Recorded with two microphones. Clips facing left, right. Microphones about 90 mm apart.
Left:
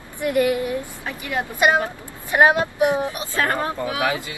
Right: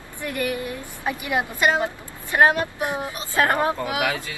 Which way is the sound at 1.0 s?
20° right (ahead or behind).